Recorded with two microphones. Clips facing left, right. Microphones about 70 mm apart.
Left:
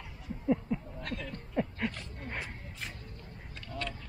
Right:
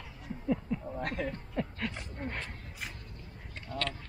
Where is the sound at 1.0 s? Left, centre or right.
Right.